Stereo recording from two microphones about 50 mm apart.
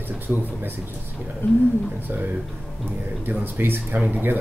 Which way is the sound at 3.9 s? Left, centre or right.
Right.